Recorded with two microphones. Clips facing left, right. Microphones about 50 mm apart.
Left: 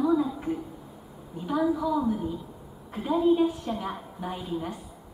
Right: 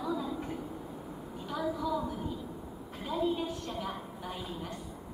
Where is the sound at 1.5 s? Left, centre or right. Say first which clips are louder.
Left 8 dB; centre.